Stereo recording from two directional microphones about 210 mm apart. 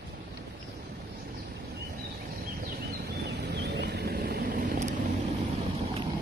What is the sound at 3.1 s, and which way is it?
Vehicle, 55° right (ahead or behind).